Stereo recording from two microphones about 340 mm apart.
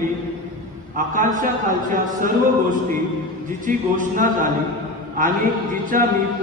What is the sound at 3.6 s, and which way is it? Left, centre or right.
Speech, right.